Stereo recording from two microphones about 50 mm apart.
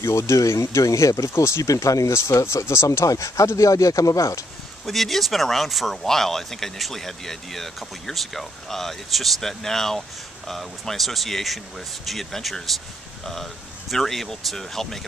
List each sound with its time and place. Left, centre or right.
0.0 s speech: left
4.8 s speech: centre